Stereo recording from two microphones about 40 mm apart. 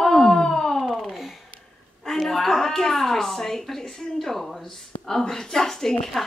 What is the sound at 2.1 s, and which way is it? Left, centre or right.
A woman's voice, centre.